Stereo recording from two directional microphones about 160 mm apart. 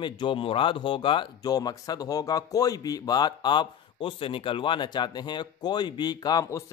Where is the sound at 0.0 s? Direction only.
30° left (ahead or behind).